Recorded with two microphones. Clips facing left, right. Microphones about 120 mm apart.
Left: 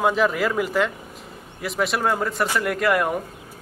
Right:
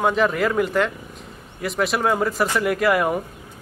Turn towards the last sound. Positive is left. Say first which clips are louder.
# right 2 dB
turn(degrees=0)  # may be behind; listen again after turning